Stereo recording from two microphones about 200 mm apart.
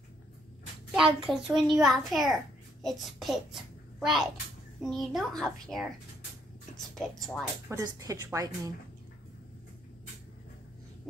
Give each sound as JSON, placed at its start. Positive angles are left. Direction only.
{"t": 0.9, "sound": "a child's voice", "side_deg": 0}
{"t": 7.0, "sound": "a woman's voice", "side_deg": 0}
{"t": 7.7, "sound": "a woman's voice", "side_deg": -15}